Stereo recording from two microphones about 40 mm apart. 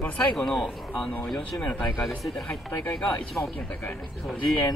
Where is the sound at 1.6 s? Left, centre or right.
Left.